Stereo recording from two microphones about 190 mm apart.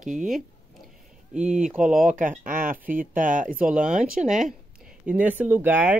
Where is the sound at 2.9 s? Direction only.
45° right (ahead or behind).